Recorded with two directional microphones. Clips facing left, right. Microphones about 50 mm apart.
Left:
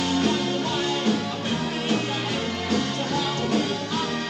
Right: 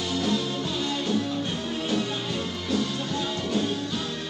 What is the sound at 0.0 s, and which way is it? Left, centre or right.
Music, left.